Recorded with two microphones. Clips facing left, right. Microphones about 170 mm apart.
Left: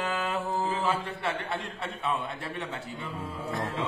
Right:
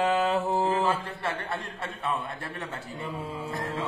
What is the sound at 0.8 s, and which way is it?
A man's voice, centre (ahead or behind).